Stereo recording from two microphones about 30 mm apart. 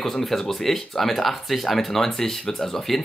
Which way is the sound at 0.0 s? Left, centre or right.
Centre.